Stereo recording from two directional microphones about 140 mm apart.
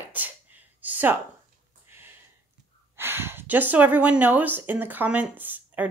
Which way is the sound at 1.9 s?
15° right (ahead or behind).